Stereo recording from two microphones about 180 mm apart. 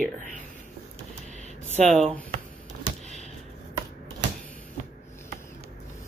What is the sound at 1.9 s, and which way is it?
Speech, 5° left (ahead or behind).